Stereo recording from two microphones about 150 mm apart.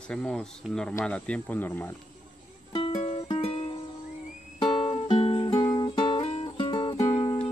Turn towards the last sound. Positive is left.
turn(degrees=25)  # may be behind; listen again after turning